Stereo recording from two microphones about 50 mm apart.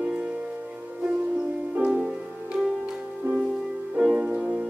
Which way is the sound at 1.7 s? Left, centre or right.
Right.